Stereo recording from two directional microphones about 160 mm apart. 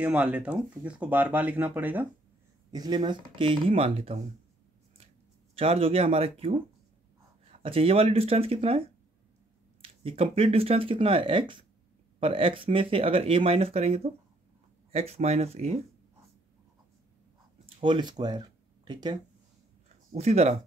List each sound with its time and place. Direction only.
0.0 s speech: 10° right (ahead or behind)
2.7 s speech: 25° right (ahead or behind)
5.6 s speech: 35° right (ahead or behind)
17.6 s speech: 35° right (ahead or behind)
20.2 s speech: 40° right (ahead or behind)